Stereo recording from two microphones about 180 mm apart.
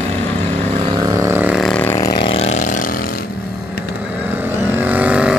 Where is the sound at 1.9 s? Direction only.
20° left (ahead or behind); by 3.1 s 50° left (ahead or behind).